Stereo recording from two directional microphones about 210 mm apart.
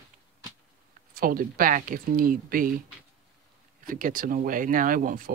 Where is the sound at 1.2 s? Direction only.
40° right (ahead or behind).